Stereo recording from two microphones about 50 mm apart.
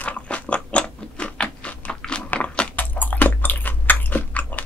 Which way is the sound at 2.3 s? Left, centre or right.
Left.